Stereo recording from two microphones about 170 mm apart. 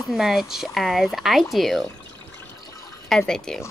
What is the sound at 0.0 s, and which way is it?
Child singing, centre (ahead or behind).